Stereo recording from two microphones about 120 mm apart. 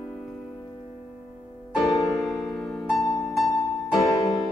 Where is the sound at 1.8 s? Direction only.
Centre (ahead or behind).